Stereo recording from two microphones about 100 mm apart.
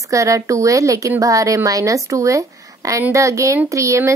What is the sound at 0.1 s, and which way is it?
Speech, 35° right (ahead or behind).